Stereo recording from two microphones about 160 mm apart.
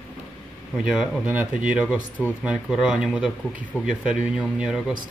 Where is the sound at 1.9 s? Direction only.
10° left (ahead or behind).